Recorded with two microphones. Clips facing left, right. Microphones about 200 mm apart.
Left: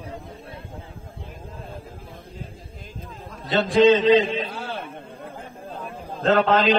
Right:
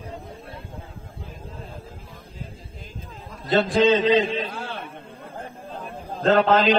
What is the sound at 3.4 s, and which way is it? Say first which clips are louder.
A man's voice: left 2 dB; centre (ahead or behind).